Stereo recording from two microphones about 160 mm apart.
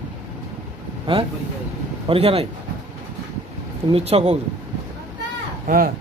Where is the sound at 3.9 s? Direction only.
40° right (ahead or behind).